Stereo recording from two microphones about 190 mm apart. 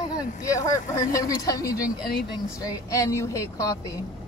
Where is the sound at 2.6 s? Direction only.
15° left (ahead or behind).